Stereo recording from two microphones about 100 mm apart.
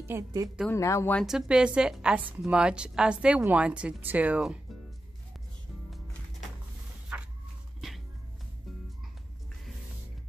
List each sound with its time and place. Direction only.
0.0 s a woman's voice: 25° right (ahead or behind)
0.7 s speech: 30° left (ahead or behind)
1.2 s speech: 5° right (ahead or behind)